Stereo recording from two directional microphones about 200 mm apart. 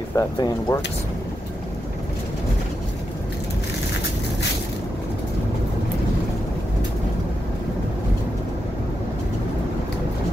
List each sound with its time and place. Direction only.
0.1 s speech: 20° left (ahead or behind)